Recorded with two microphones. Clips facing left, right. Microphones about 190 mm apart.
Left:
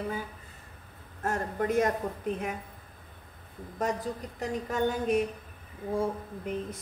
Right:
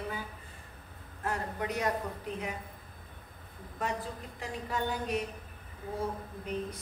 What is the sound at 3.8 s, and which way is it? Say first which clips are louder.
A woman's voice: left 5 dB; 40° left (ahead or behind).